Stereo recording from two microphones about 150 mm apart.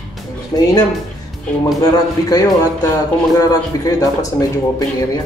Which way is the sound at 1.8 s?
25° left (ahead or behind).